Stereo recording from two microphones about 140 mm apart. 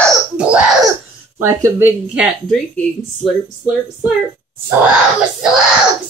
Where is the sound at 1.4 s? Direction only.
15° right (ahead or behind).